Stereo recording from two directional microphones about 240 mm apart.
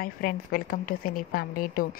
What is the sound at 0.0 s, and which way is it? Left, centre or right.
A woman's voice, left.